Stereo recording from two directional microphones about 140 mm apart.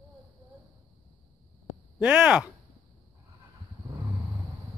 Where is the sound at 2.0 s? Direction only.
10° right (ahead or behind).